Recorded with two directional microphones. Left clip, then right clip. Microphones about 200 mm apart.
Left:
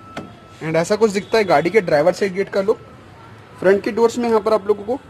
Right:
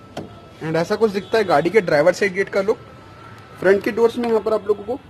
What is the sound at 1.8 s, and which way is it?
Speech, 10° left (ahead or behind).